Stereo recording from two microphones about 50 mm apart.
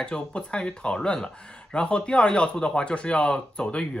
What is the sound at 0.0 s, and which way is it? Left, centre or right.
Speech, centre.